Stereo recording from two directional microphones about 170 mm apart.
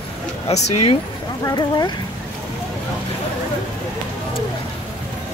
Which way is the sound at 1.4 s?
20° left (ahead or behind).